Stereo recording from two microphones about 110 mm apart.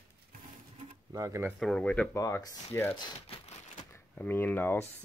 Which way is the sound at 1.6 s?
5° left (ahead or behind).